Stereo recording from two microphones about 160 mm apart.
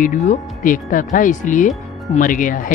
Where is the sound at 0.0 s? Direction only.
55° left (ahead or behind).